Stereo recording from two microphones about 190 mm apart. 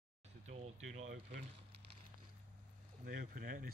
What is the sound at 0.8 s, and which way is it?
Speech, 35° right (ahead or behind).